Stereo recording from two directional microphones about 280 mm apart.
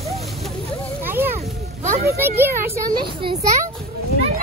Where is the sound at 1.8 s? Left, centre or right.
Right.